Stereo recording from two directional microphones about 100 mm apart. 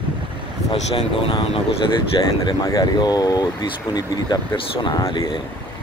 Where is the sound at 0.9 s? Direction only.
65° left (ahead or behind).